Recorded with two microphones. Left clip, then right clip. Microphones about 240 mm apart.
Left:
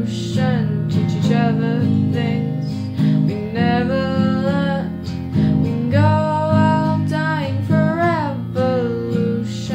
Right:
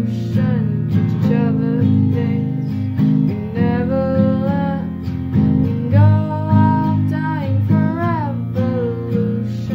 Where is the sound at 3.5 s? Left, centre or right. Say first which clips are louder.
Left 2 dB; right.